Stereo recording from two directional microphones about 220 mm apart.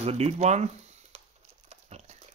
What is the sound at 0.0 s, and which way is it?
Speech, 30° right (ahead or behind).